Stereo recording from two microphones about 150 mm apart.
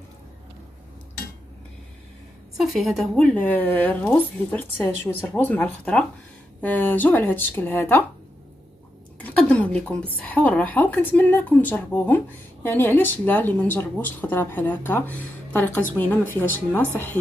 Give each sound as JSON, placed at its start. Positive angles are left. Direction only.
{"t": 2.5, "sound": "speech", "side_deg": 0}
{"t": 9.2, "sound": "a woman's voice", "side_deg": 5}